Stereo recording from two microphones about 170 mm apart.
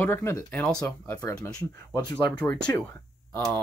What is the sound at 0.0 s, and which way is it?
Speech, 15° left (ahead or behind).